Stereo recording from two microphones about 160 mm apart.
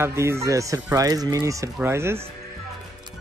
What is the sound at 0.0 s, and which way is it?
Speech, 15° right (ahead or behind).